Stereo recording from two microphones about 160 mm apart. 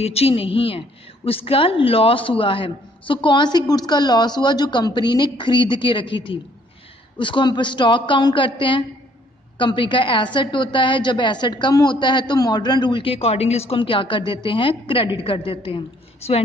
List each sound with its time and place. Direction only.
0.0 s a woman's voice: 40° left (ahead or behind)